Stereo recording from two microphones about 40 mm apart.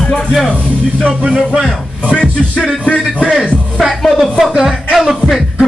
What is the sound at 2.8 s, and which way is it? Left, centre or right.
Music, left.